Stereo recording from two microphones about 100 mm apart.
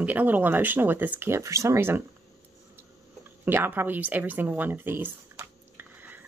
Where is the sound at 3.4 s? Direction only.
20° right (ahead or behind).